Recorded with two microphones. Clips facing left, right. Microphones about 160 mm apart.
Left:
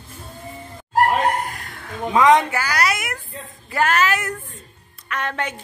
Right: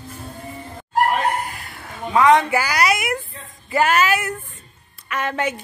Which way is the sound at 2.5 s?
10° right (ahead or behind).